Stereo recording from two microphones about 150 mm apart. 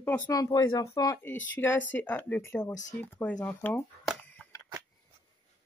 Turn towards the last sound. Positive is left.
turn(degrees=10)  # may be behind; listen again after turning